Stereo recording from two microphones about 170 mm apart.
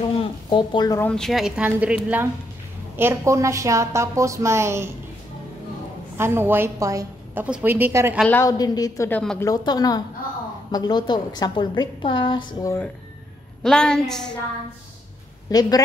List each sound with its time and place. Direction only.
0.2 s a sound: 25° left (ahead or behind)
1.0 s a woman's voice: 5° left (ahead or behind); by 4.9 s 15° right (ahead or behind)
6.1 s a woman's voice: 15° right (ahead or behind)
8.3 s a woman's voice: 15° left (ahead or behind)
13.6 s a woman's voice: 5° left (ahead or behind)
15.5 s a woman's voice: 20° left (ahead or behind)